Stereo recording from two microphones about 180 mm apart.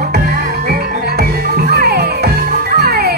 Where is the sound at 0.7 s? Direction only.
60° right (ahead or behind).